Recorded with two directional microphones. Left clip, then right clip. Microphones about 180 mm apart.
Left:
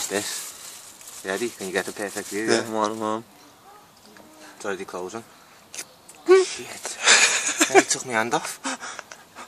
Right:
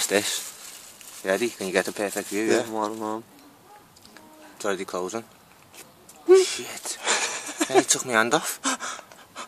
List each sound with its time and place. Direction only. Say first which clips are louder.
0.1 s speech: right 5 dB; 50° right (ahead or behind)
2.4 s speech: left 2 dB; centre (ahead or behind)
4.6 s speech: right 3 dB; 60° right (ahead or behind)
5.8 s a sound: left 8 dB; 5° left (ahead or behind)
6.4 s speech: right 1 dB; 55° right (ahead or behind)
6.8 s a sound: left 10 dB; centre (ahead or behind)
7.8 s speech: right 2 dB; 60° right (ahead or behind)